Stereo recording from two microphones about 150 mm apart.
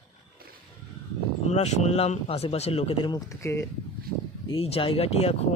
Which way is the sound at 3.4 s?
20° left (ahead or behind).